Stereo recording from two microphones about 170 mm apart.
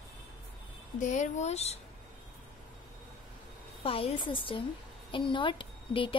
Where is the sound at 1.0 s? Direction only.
45° left (ahead or behind).